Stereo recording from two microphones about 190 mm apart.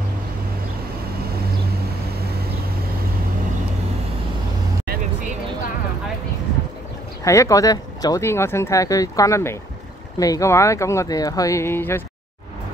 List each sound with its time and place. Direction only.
7.2 s speech: 15° left (ahead or behind)